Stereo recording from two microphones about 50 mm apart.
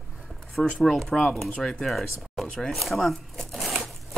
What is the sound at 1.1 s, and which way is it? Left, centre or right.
Speech, centre.